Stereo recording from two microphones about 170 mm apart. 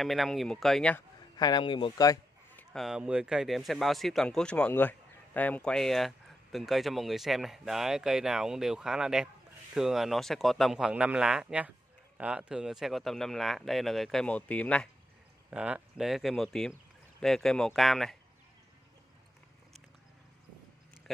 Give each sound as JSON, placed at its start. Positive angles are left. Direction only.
{"t": 0.0, "sound": "a man's voice", "side_deg": 0}
{"t": 1.3, "sound": "speech", "side_deg": 25}
{"t": 2.5, "sound": "a man's voice", "side_deg": 0}
{"t": 15.5, "sound": "a man's voice", "side_deg": -5}